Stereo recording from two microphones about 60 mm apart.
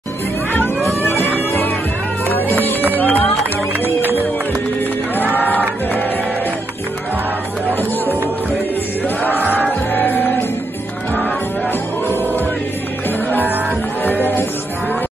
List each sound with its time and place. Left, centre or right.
1.0 s music: left
3.0 s run: left
9.3 s music: right
9.9 s music: left
14.0 s music: left